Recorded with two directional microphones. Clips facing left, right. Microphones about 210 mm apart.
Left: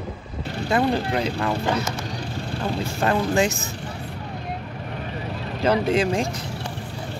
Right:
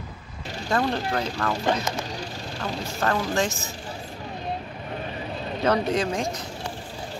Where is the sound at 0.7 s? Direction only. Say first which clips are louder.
Left 3 dB; 15° left (ahead or behind).